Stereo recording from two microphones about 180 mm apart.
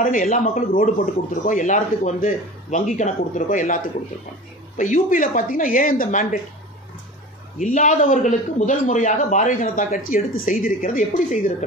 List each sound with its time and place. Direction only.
0.0 s speech: 45° left (ahead or behind)
7.5 s speech: 45° left (ahead or behind)